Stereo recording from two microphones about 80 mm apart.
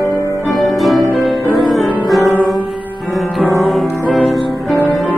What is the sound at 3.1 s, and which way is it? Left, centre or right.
Music, centre.